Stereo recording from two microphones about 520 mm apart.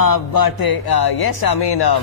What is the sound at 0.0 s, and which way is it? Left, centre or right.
A man's voice, left.